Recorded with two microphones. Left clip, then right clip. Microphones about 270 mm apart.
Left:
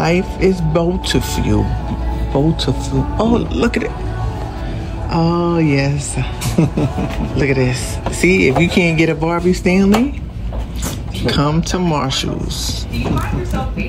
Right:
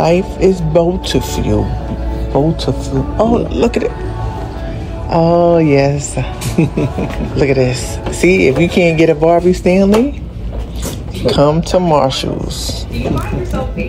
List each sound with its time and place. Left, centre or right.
0.0 s speech: centre
5.1 s speech: centre
8.5 s speech: left
8.8 s speech: centre
11.2 s speech: centre